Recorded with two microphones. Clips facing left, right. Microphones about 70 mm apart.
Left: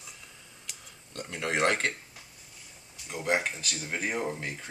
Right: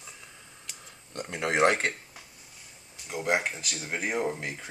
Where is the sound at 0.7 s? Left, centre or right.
Centre.